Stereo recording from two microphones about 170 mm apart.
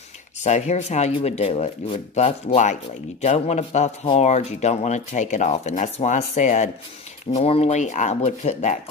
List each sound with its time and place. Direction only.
0.4 s speech: 45° left (ahead or behind)